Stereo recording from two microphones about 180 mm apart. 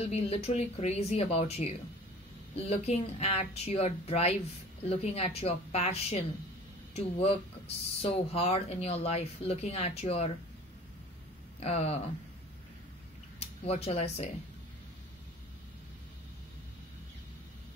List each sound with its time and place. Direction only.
0.1 s speech: 35° left (ahead or behind)
11.6 s speech: 35° left (ahead or behind)
13.4 s speech: 35° left (ahead or behind)